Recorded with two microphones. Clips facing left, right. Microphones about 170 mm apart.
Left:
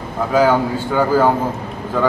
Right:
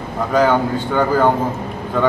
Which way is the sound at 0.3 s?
5° left (ahead or behind).